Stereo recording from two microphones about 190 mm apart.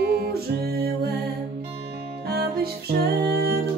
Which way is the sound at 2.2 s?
55° right (ahead or behind).